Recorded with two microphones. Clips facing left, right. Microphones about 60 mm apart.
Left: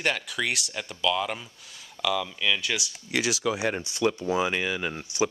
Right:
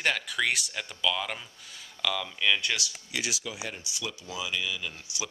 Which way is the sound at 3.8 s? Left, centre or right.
Left.